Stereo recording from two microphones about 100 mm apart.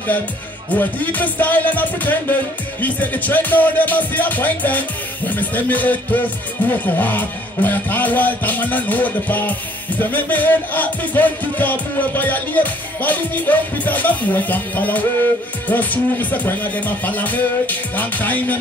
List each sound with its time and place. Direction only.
0.7 s music: 15° left (ahead or behind)